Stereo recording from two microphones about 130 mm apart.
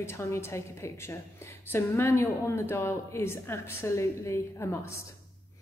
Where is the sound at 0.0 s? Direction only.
20° left (ahead or behind).